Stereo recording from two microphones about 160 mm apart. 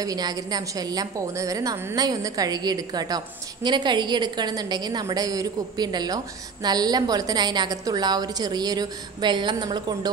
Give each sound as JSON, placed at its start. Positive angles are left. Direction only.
{"t": 0.0, "sound": "a woman's voice", "side_deg": -25}